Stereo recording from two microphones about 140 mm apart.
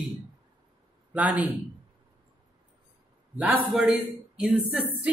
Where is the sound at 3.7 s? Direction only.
5° right (ahead or behind).